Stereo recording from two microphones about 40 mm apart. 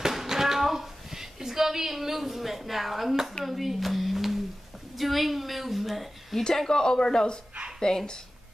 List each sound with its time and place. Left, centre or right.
0.0 s a sound: centre
4.9 s a woman's voice: centre
6.4 s speech: centre